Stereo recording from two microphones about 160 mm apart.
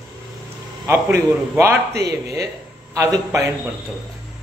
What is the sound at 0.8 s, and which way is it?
A man's voice, 20° right (ahead or behind).